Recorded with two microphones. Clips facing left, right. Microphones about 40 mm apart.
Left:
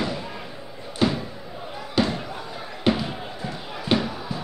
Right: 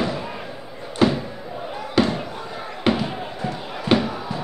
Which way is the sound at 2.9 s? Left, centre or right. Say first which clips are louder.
Right 2 dB; right.